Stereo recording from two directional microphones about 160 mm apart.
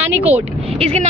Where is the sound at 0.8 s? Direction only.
40° right (ahead or behind).